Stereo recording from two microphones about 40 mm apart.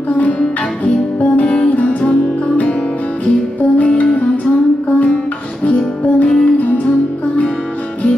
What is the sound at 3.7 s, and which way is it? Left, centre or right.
Music, left.